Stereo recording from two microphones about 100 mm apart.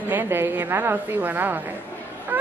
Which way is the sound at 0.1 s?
20° right (ahead or behind).